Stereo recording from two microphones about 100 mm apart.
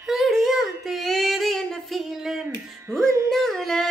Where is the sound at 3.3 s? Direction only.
5° left (ahead or behind).